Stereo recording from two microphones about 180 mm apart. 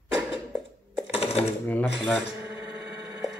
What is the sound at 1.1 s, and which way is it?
Sewing machine, 35° left (ahead or behind).